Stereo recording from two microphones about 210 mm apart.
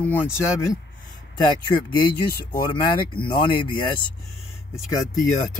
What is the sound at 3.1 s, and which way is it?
Speech, 25° left (ahead or behind).